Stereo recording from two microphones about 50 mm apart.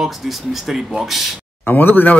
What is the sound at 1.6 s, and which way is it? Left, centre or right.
Speech, left.